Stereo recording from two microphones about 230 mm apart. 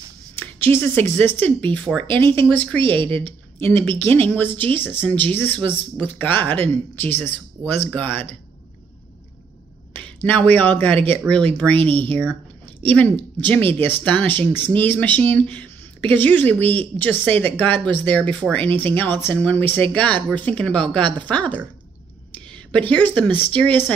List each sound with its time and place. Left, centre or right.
0.4 s speech: centre
2.8 s a woman's voice: right
3.6 s speech: centre
10.0 s speech: centre
22.7 s speech: centre